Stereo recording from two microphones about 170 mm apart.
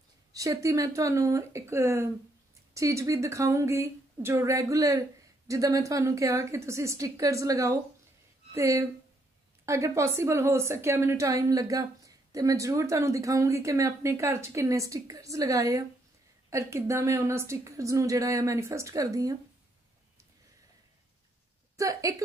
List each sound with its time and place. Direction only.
0.3 s a woman's voice: 20° right (ahead or behind)
21.7 s a woman's voice: 20° right (ahead or behind)